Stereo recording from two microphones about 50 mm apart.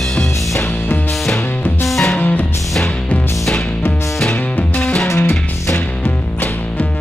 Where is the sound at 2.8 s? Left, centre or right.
Left.